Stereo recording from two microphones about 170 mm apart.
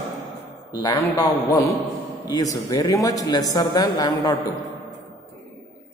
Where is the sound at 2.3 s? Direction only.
20° left (ahead or behind).